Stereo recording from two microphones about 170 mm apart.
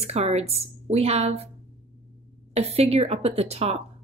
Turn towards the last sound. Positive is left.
turn(degrees=-35)  # may be behind; listen again after turning